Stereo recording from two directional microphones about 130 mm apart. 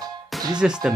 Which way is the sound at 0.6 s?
5° right (ahead or behind).